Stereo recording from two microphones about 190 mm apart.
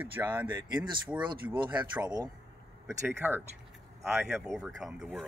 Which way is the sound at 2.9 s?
10° right (ahead or behind).